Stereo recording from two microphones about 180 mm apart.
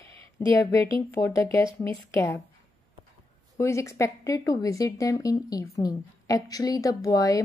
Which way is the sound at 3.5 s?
15° left (ahead or behind).